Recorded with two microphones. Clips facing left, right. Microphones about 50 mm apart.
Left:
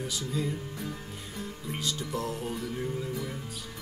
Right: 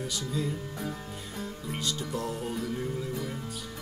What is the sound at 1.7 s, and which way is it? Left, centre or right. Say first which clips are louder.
Speech: even; centre.